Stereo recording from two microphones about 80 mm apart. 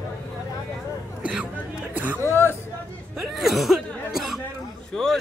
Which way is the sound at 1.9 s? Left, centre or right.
Right.